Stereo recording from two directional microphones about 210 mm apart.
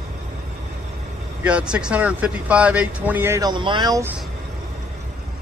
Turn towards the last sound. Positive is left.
turn(degrees=-15)  # may be behind; listen again after turning